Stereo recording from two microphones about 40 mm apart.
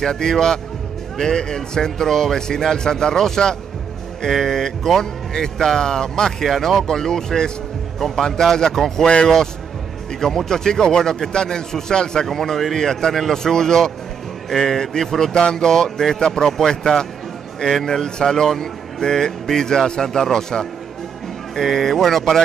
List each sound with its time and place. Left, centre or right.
0.0 s speech: centre
6.4 s speech: centre
9.0 s a man's voice: left
10.2 s speech: centre
12.3 s speech: centre